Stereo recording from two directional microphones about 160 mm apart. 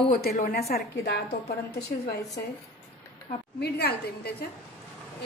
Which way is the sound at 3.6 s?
90° left.